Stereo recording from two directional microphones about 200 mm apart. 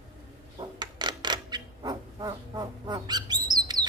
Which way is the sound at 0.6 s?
20° right (ahead or behind).